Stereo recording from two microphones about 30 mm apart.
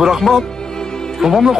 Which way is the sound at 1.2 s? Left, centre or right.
Centre.